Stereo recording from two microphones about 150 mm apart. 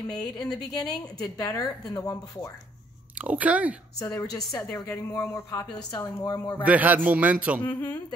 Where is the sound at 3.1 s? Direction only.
10° right (ahead or behind).